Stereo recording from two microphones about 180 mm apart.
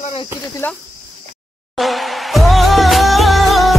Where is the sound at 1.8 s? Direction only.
Centre (ahead or behind).